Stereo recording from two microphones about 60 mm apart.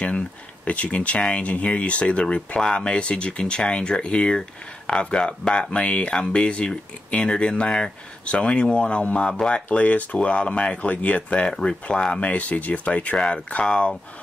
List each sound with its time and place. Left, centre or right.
0.7 s speech: left